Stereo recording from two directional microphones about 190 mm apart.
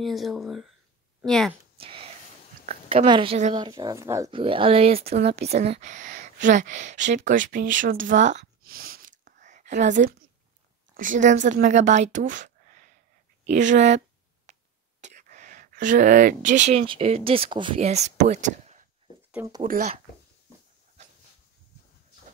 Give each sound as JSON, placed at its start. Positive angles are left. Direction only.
{"t": 0.0, "sound": "speech", "side_deg": 0}
{"t": 1.8, "sound": "a sound", "side_deg": -30}
{"t": 3.1, "sound": "a woman's voice", "side_deg": -30}
{"t": 3.5, "sound": "speech", "side_deg": -20}
{"t": 4.3, "sound": "a woman's voice", "side_deg": -25}
{"t": 19.3, "sound": "speech", "side_deg": -15}
{"t": 19.6, "sound": "a woman's voice", "side_deg": -40}